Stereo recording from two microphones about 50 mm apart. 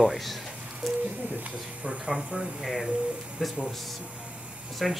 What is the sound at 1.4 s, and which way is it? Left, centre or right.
Speech, right.